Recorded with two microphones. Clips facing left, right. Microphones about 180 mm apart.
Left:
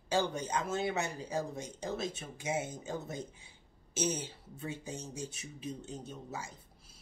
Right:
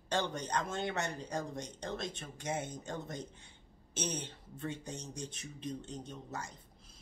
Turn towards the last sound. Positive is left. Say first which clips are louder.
# left 1 dB
turn(degrees=5)  # may be behind; listen again after turning